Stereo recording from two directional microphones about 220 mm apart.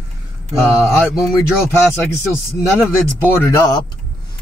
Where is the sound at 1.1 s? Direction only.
Centre (ahead or behind).